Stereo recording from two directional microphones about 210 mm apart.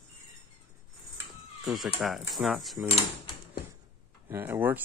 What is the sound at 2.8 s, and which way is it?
Speech, 25° left (ahead or behind).